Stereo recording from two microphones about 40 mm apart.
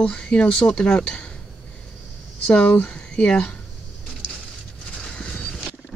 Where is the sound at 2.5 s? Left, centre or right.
Left.